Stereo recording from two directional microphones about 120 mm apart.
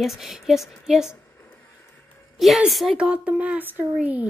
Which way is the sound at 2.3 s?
Centre (ahead or behind).